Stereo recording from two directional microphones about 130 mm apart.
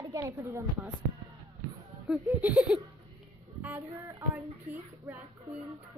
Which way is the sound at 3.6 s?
15° right (ahead or behind).